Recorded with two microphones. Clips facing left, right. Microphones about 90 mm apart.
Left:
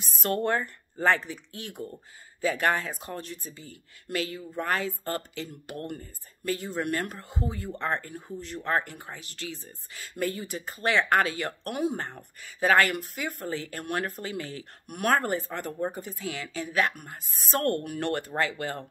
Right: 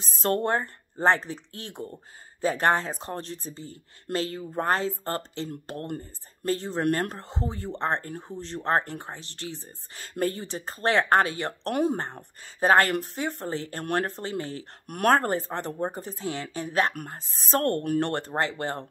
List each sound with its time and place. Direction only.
0.0 s speech: 35° right (ahead or behind)
0.4 s speech: 25° right (ahead or behind)
4.3 s speech: 40° right (ahead or behind); by 9.8 s 20° right (ahead or behind)
9.9 s speech: 35° right (ahead or behind)
14.9 s speech: 45° right (ahead or behind)
16.9 s a woman's voice: 45° right (ahead or behind)
17.2 s speech: 35° right (ahead or behind)